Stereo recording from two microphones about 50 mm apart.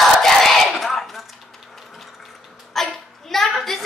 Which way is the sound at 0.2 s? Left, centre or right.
Centre.